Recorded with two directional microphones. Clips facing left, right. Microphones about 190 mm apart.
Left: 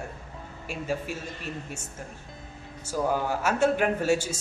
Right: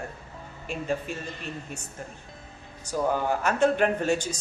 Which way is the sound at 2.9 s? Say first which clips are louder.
Right 1 dB; 5° left (ahead or behind).